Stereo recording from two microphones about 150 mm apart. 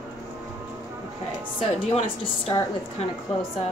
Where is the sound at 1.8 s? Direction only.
40° left (ahead or behind).